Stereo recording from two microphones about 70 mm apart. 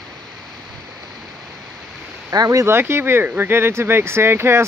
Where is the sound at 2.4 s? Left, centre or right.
Right.